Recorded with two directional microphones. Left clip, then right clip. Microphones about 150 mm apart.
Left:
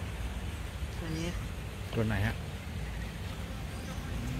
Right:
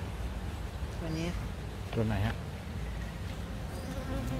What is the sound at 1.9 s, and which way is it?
Speech, centre (ahead or behind).